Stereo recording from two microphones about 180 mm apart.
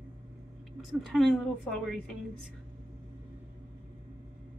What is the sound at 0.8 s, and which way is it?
A woman's voice, centre (ahead or behind).